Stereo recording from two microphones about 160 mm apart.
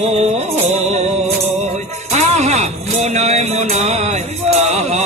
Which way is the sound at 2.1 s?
45° right (ahead or behind).